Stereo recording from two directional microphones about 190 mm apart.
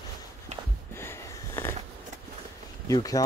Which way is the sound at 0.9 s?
15° left (ahead or behind).